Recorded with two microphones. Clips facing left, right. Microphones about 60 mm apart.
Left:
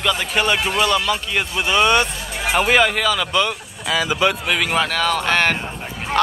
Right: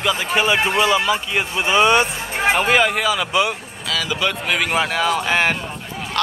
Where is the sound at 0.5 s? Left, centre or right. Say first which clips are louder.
Right 2 dB; right.